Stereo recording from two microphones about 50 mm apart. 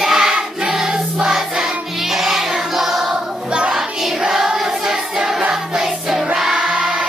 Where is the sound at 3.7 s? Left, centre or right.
Centre.